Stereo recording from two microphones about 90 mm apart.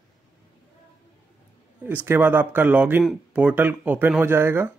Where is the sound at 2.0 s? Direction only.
25° right (ahead or behind).